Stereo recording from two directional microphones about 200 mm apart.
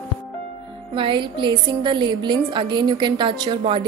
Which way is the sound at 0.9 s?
25° right (ahead or behind).